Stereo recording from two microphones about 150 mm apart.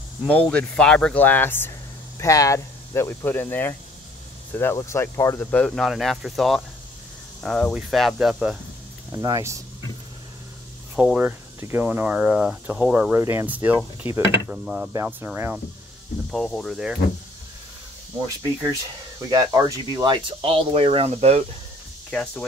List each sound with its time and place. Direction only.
0.3 s speech: 10° left (ahead or behind)
9.1 s speech: 20° right (ahead or behind)
11.0 s speech: 10° right (ahead or behind)
13.1 s speech: 20° right (ahead or behind)
14.9 s speech: 15° right (ahead or behind)
16.3 s speech: 5° left (ahead or behind)
19.3 s speech: 25° right (ahead or behind); by 21.5 s 45° right (ahead or behind)
22.1 s speech: 10° left (ahead or behind)